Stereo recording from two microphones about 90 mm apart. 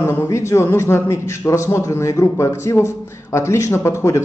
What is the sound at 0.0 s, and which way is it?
A man's voice, 30° left (ahead or behind).